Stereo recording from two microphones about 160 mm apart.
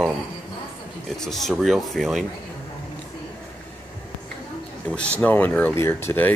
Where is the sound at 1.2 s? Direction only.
Centre (ahead or behind).